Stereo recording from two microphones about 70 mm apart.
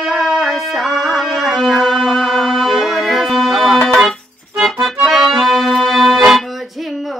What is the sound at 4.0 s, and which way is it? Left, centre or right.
Accordion, centre.